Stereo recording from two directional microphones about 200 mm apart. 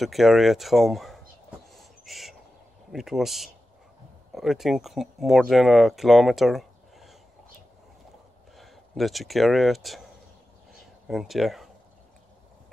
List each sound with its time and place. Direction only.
0.0 s speech: centre (ahead or behind)
1.7 s a sound: centre (ahead or behind)
2.9 s speech: centre (ahead or behind)
8.5 s speech: centre (ahead or behind)
11.1 s speech: centre (ahead or behind)